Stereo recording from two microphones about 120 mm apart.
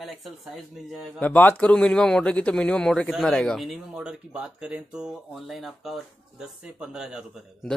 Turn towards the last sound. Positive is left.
turn(degrees=-5)  # may be behind; listen again after turning